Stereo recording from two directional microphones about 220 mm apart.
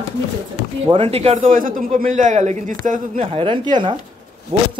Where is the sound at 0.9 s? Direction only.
25° right (ahead or behind).